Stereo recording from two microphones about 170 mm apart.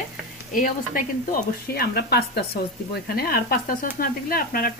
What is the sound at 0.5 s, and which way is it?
Speech, 55° left (ahead or behind).